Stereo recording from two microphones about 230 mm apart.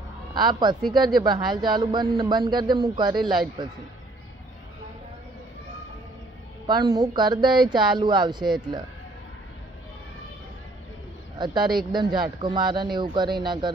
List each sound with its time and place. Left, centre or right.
0.3 s speech: centre
6.7 s speech: centre
11.3 s speech: centre